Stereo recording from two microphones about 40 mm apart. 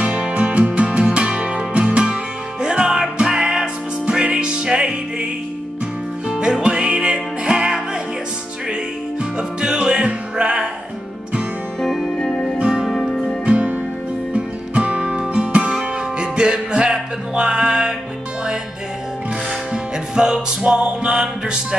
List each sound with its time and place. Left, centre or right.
0.0 s music: right
2.6 s music: centre
6.2 s music: centre
9.2 s music: right
11.8 s music: centre
12.5 s music: centre
12.8 s music: centre
13.5 s music: right
19.7 s music: right